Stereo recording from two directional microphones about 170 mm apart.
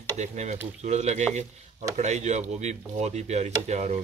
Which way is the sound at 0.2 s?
40° right (ahead or behind).